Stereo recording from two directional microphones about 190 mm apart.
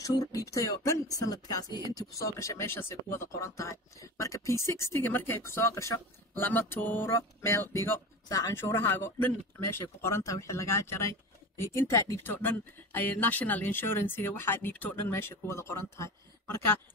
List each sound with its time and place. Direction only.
0.0 s speech: 20° left (ahead or behind)